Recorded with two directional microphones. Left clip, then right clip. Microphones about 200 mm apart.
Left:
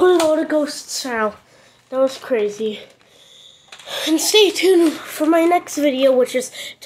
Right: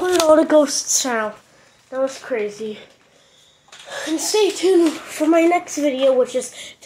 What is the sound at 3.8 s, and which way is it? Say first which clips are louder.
A woman's voice: left 5 dB; 25° left (ahead or behind).